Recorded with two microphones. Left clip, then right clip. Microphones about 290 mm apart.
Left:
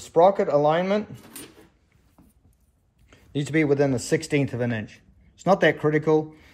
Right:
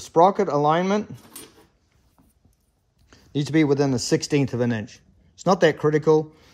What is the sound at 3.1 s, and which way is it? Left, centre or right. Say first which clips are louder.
Speech: right 2 dB; centre.